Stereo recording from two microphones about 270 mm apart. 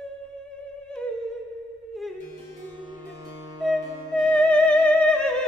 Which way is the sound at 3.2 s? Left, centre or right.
Centre.